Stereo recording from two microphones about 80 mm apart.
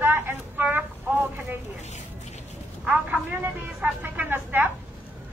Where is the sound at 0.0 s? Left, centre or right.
Right.